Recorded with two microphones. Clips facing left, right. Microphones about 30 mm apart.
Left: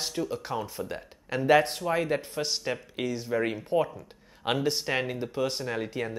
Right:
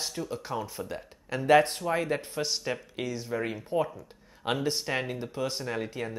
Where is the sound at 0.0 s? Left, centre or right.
Centre.